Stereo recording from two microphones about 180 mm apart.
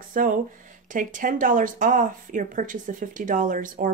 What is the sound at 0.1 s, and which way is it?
Speech, 50° right (ahead or behind).